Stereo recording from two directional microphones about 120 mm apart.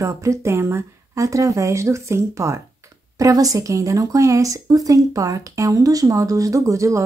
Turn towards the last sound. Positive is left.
turn(degrees=-25)  # may be behind; listen again after turning